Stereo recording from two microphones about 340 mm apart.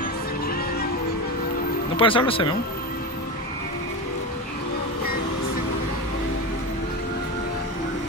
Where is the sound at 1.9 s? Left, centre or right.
Centre.